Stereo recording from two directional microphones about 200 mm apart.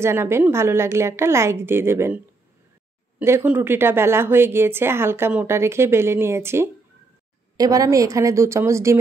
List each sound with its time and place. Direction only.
0.0 s a woman's voice: 15° right (ahead or behind)